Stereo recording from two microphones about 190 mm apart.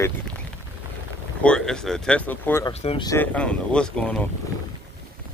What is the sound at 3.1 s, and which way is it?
Speech, 10° left (ahead or behind).